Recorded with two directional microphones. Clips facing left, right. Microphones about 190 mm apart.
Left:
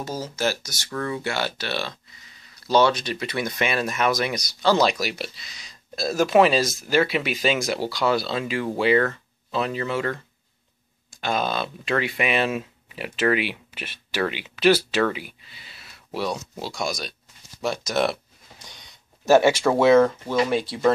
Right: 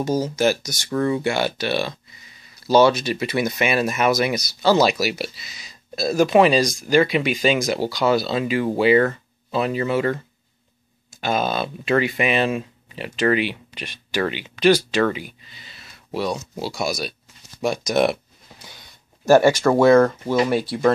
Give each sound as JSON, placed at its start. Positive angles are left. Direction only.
{"t": 0.0, "sound": "speech", "side_deg": -15}
{"t": 17.6, "sound": "a sound", "side_deg": -15}
{"t": 20.2, "sound": "speech", "side_deg": -5}